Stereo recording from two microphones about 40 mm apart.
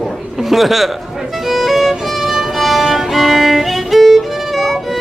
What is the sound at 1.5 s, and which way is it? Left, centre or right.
Music, centre.